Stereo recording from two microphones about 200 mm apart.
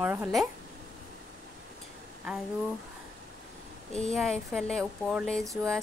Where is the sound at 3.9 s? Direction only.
5° left (ahead or behind).